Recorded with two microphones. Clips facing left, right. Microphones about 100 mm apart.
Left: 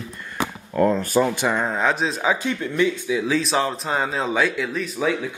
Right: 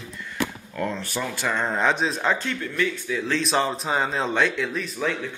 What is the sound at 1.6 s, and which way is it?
Speech, centre (ahead or behind).